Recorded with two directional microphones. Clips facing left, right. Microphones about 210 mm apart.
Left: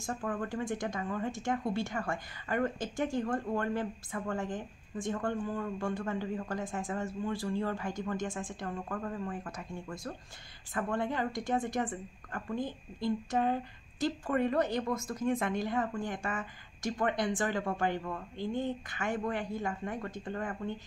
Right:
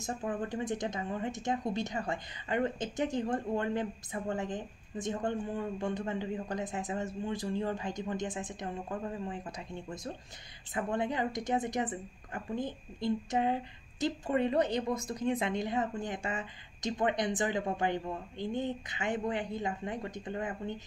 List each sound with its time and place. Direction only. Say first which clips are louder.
0.0 s speech: even; 20° right (ahead or behind)